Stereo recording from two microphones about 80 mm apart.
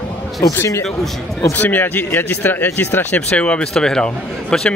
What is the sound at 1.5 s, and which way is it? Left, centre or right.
Speech, left.